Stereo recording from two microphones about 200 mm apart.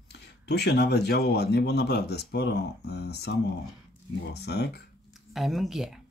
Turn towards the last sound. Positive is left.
turn(degrees=0)  # may be behind; listen again after turning